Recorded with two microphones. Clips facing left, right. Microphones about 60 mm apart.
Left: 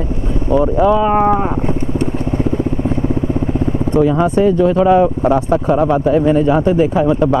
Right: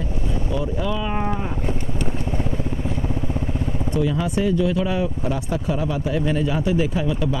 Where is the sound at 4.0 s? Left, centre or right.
Left.